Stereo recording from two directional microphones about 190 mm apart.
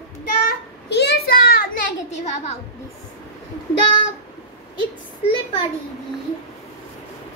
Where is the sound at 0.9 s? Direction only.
55° left (ahead or behind).